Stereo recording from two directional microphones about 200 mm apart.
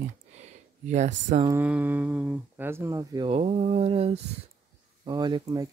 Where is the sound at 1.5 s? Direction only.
10° right (ahead or behind).